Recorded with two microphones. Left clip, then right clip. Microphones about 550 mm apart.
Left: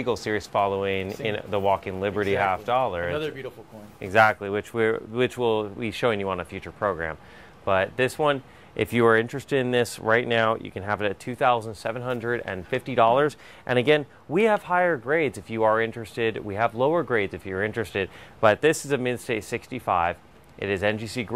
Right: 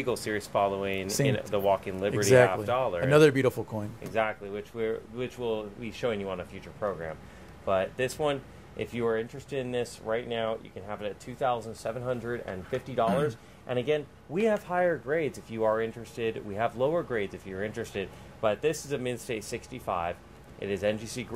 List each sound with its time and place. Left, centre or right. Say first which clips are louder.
0.0 s speech: left 4 dB; left
3.2 s speech: right 10 dB; right
4.1 s speech: left 11 dB; left